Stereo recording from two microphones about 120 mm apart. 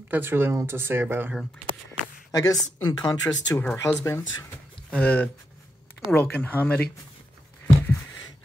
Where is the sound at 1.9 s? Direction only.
30° left (ahead or behind).